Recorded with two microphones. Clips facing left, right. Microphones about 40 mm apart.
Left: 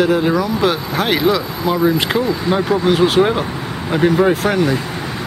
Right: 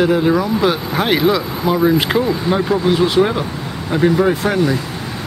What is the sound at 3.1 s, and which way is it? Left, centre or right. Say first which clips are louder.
Speech: left 1 dB; centre.